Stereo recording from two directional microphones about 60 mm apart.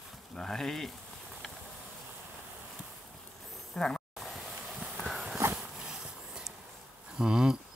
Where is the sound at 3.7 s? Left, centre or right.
Centre.